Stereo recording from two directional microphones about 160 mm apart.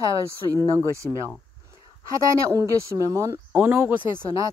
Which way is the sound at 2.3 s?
20° right (ahead or behind).